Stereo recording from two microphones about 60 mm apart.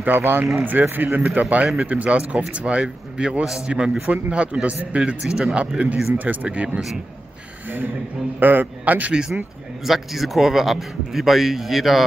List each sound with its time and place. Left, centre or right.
0.0 s a man's voice: right; by 5.7 s centre
6.1 s speech: right
8.4 s a man's voice: right
9.1 s speech: centre
9.8 s speech: centre